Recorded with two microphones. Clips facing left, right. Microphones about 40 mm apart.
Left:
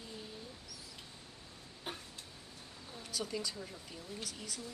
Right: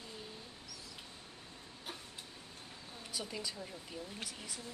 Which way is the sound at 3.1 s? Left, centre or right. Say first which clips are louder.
Left 3 dB; centre.